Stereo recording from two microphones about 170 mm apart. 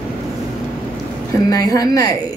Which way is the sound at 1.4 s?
20° left (ahead or behind).